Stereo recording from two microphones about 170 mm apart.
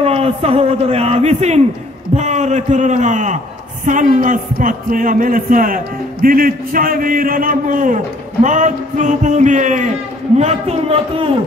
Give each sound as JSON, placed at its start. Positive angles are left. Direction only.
{"t": 0.0, "sound": "a man's voice", "side_deg": -35}